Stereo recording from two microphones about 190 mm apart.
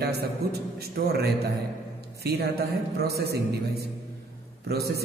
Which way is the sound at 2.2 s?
55° right (ahead or behind).